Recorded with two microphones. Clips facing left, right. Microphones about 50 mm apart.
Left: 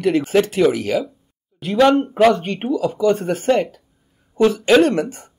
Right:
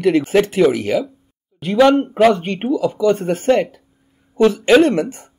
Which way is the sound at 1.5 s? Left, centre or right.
Centre.